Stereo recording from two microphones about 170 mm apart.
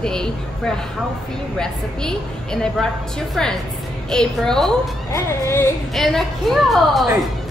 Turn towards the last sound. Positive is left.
turn(degrees=0)  # may be behind; listen again after turning